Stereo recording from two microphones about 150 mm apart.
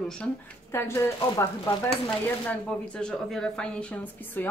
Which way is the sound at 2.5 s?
5° left (ahead or behind).